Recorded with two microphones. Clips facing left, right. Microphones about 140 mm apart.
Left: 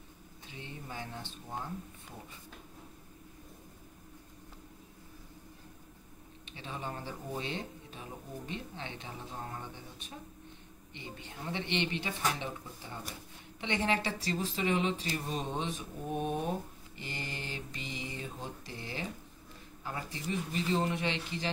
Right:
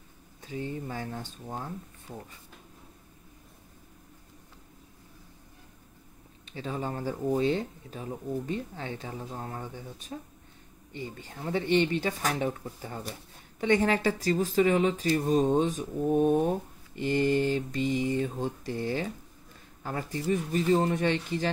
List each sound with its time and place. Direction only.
0.5 s speech: 45° right (ahead or behind)
6.5 s speech: 40° right (ahead or behind)
13.6 s speech: 45° right (ahead or behind)